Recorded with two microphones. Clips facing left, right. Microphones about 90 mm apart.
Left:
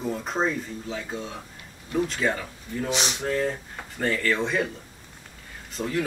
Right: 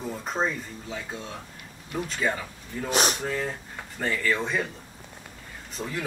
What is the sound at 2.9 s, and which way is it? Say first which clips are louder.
Speech: right 6 dB; 45° right (ahead or behind).